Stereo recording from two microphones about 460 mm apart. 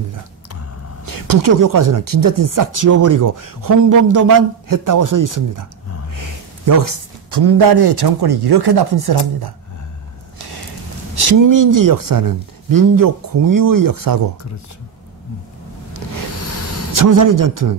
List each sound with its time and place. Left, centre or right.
1.0 s speech: right
11.1 s speech: right
16.3 s a sound: left
16.9 s speech: right